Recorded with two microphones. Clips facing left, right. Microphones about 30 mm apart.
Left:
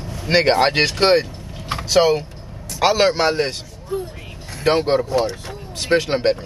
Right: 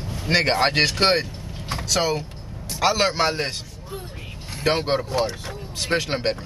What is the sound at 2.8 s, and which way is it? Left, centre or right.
Speech, centre.